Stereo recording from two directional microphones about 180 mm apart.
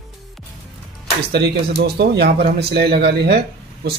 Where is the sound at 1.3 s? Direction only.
65° right (ahead or behind).